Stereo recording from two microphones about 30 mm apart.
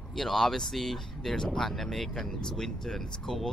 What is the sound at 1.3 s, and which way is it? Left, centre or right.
Speech, left.